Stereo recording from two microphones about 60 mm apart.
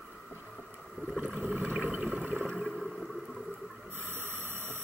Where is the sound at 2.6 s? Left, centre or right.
Centre.